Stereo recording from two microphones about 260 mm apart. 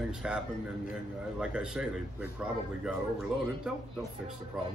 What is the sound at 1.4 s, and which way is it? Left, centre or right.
Speech, centre.